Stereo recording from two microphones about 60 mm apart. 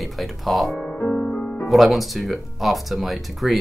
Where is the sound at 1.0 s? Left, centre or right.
Centre.